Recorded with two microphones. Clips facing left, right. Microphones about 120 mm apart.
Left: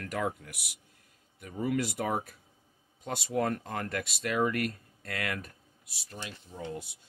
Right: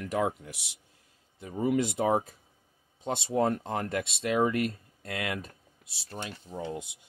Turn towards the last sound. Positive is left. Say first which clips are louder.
# right 3 dB
turn(degrees=-20)  # may be behind; listen again after turning